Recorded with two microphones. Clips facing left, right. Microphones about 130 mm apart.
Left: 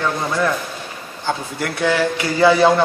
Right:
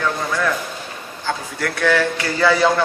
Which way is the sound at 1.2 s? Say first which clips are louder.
Left 1 dB; 20° left (ahead or behind).